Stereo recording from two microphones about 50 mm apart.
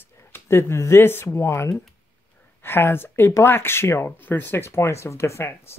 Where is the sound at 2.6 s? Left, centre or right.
Left.